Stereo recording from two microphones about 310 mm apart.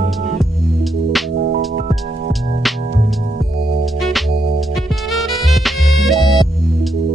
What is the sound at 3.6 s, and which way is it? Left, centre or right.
Music, right.